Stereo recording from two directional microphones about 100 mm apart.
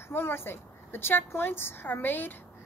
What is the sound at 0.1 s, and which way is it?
A woman's voice, 25° left (ahead or behind).